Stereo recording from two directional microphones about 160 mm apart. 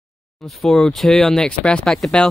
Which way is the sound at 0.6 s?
5° left (ahead or behind).